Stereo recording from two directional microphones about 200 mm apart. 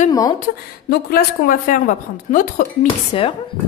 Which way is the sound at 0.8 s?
50° left (ahead or behind).